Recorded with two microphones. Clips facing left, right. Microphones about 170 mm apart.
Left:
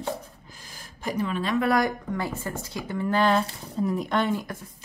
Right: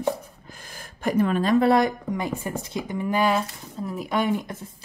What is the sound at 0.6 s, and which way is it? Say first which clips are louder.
Gasp: right 3 dB; 55° right (ahead or behind).